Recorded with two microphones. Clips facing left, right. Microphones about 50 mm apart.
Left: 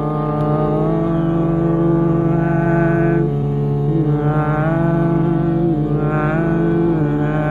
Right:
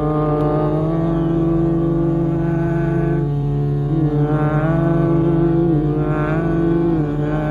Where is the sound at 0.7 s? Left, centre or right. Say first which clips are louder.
Left 2 dB; centre; by 3.2 s left.